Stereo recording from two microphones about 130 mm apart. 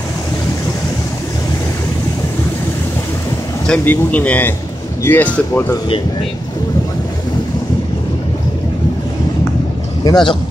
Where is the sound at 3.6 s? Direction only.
10° left (ahead or behind).